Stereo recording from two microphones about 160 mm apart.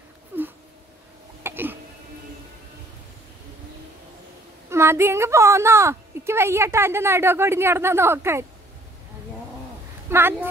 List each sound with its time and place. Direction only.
0.3 s a sound: 10° right (ahead or behind)
4.6 s a woman's voice: 15° right (ahead or behind)
10.0 s a woman's voice: 15° right (ahead or behind)